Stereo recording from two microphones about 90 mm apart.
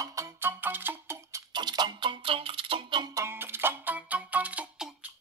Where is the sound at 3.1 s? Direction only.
30° right (ahead or behind).